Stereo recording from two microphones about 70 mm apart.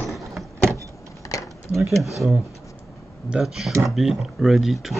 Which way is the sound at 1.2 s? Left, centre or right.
Left.